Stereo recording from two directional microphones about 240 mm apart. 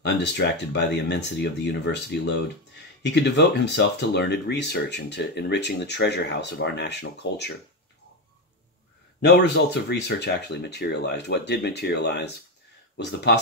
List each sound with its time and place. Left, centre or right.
0.0 s speech: left
9.2 s speech: left